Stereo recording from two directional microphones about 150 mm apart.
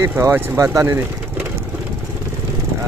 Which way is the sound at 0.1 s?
20° right (ahead or behind).